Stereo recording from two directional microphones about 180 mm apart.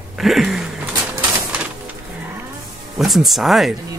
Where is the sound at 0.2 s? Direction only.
Centre (ahead or behind).